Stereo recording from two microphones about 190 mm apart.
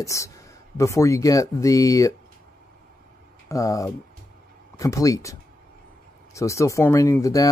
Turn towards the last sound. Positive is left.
turn(degrees=20)  # may be behind; listen again after turning